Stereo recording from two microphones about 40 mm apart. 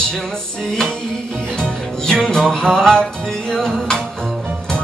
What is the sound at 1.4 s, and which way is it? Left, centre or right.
Music, centre.